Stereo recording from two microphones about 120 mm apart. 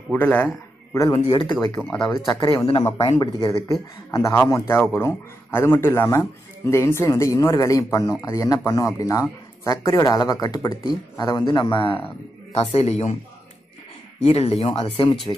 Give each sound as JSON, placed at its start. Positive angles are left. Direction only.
{"t": 0.1, "sound": "a man's voice", "side_deg": 15}
{"t": 1.1, "sound": "speech", "side_deg": 50}
{"t": 1.8, "sound": "speech", "side_deg": 5}
{"t": 2.2, "sound": "speech", "side_deg": 30}
{"t": 12.5, "sound": "speech", "side_deg": 60}
{"t": 14.2, "sound": "speech", "side_deg": 55}